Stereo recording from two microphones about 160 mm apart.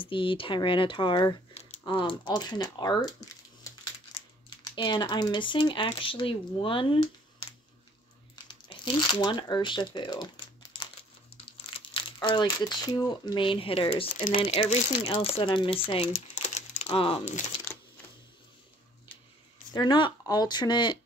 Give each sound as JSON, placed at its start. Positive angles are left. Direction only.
{"t": 0.0, "sound": "speech", "side_deg": 30}
{"t": 4.5, "sound": "speech", "side_deg": 30}
{"t": 8.5, "sound": "speech", "side_deg": 30}
{"t": 11.4, "sound": "speech", "side_deg": 35}
{"t": 16.4, "sound": "a sound", "side_deg": 45}
{"t": 19.7, "sound": "speech", "side_deg": 30}